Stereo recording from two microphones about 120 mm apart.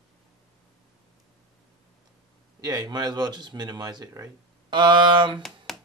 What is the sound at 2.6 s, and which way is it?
Speech, 30° right (ahead or behind).